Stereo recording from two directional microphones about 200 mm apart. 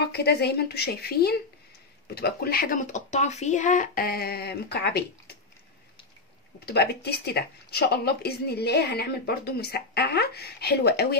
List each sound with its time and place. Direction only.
0.1 s speech: 55° left (ahead or behind)
6.6 s speech: 55° left (ahead or behind)